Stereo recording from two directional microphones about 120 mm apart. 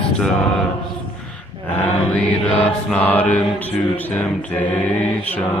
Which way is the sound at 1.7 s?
10° left (ahead or behind).